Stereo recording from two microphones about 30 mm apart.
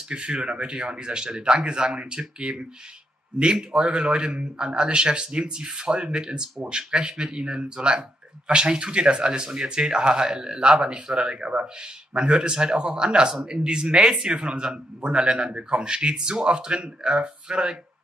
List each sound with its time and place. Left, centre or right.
0.1 s speech: right
13.3 s a man's voice: centre
13.7 s speech: right